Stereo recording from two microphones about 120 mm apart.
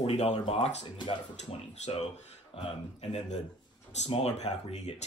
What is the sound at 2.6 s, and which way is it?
Speech, 60° left (ahead or behind).